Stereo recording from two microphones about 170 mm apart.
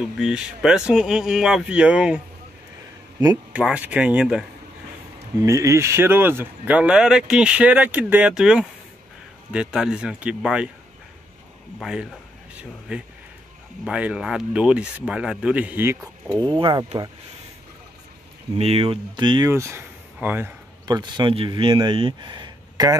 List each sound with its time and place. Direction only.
0.0 s speech: 5° right (ahead or behind)
3.5 s speech: 5° right (ahead or behind)
5.4 s speech: 20° right (ahead or behind)
11.8 s speech: 5° right (ahead or behind)
16.3 s speech: 25° right (ahead or behind)
18.6 s speech: 35° right (ahead or behind)
19.5 s speech: 15° right (ahead or behind)
20.8 s speech: 25° right (ahead or behind)